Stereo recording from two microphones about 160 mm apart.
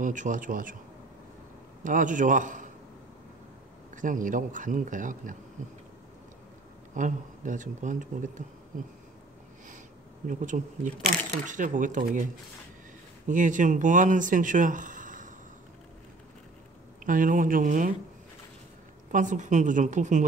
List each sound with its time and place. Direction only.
0.0 s speech: 55° right (ahead or behind)
1.9 s speech: 55° right (ahead or behind)
3.9 s speech: 55° right (ahead or behind)
7.0 s speech: 55° right (ahead or behind)
10.2 s speech: 50° right (ahead or behind)
13.3 s speech: 55° right (ahead or behind)
17.0 s speech: 55° right (ahead or behind)
19.1 s speech: 50° right (ahead or behind)